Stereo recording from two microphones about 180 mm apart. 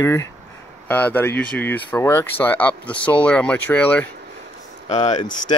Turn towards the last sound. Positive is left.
turn(degrees=25)  # may be behind; listen again after turning